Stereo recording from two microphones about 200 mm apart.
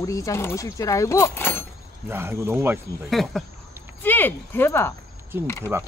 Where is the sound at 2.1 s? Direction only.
10° right (ahead or behind).